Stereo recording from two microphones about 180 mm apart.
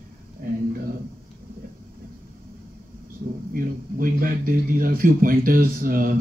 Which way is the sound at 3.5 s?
50° right (ahead or behind).